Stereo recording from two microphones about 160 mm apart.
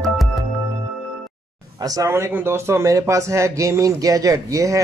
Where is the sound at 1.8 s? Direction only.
20° right (ahead or behind).